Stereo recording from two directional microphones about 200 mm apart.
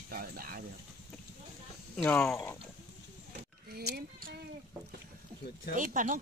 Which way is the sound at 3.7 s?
50° right (ahead or behind).